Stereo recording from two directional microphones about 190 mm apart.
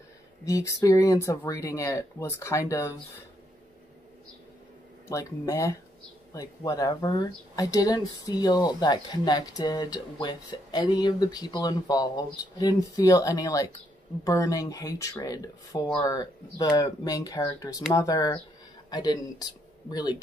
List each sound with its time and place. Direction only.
0.5 s speech: 15° left (ahead or behind)
5.1 s speech: 15° left (ahead or behind)